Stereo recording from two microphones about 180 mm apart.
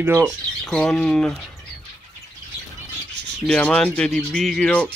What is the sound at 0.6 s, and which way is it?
Speech, 5° left (ahead or behind).